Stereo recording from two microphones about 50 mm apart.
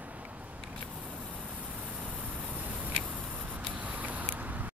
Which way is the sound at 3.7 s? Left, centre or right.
Right.